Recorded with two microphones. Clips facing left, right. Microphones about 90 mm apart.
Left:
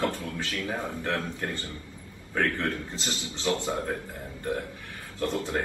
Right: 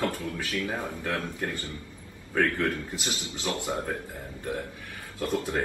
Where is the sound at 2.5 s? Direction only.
30° left (ahead or behind).